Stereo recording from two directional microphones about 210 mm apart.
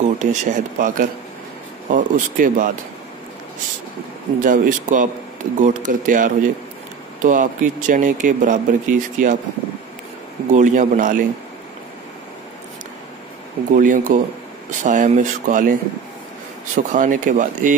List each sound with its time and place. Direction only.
0.0 s speech: 35° right (ahead or behind)
4.4 s speech: 40° right (ahead or behind)
10.5 s speech: 35° right (ahead or behind)
13.7 s speech: 40° right (ahead or behind)